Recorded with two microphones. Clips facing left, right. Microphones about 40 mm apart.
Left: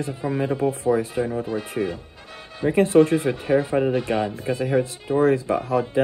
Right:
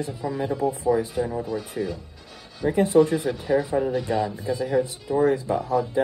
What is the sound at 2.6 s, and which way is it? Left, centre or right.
Speech, left.